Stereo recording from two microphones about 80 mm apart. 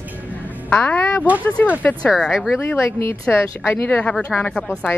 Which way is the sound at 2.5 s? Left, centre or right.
Left.